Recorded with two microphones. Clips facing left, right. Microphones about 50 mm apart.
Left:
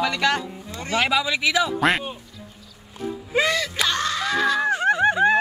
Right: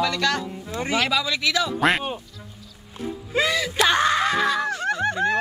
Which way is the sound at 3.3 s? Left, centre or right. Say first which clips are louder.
Even; centre.